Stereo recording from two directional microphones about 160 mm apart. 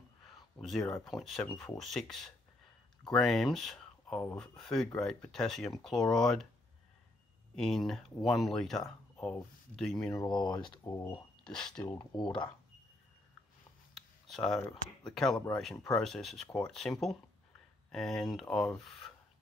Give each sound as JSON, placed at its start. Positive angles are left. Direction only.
{"t": 0.2, "sound": "speech", "side_deg": 0}
{"t": 7.5, "sound": "speech", "side_deg": 0}
{"t": 10.1, "sound": "speech", "side_deg": 25}
{"t": 11.4, "sound": "speech", "side_deg": 5}
{"t": 11.9, "sound": "speech", "side_deg": 20}
{"t": 13.9, "sound": "speech", "side_deg": 0}
{"t": 17.9, "sound": "speech", "side_deg": 0}